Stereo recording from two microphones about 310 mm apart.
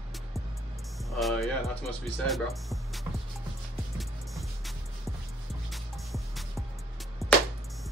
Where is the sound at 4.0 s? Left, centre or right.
Centre.